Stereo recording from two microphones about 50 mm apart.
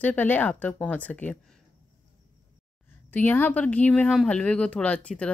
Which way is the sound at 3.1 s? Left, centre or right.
Left.